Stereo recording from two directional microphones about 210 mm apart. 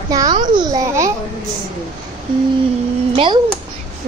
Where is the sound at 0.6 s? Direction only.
15° right (ahead or behind).